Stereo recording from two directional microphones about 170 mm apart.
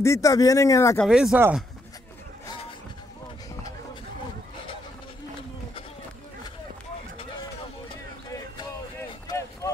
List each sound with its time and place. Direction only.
0.0 s speech: 20° left (ahead or behind)
0.9 s speech: centre (ahead or behind)
8.5 s a sound: 20° left (ahead or behind)